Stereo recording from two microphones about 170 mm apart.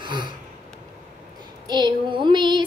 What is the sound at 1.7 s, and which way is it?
Music, 25° right (ahead or behind).